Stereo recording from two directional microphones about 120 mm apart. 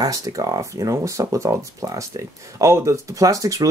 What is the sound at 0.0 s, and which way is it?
Speech, 30° right (ahead or behind).